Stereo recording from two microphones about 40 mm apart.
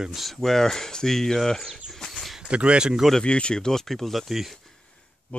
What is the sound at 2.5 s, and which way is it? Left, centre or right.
Speech, right.